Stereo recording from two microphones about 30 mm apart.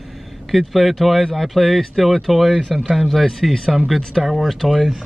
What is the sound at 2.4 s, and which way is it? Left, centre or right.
Speech, centre.